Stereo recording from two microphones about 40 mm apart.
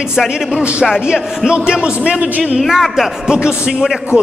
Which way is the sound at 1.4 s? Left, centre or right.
Right.